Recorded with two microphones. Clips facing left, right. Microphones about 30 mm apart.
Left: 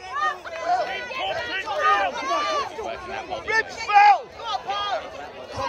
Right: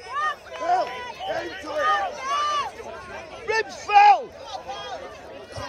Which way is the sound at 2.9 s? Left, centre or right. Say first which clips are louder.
Left 6 dB; left.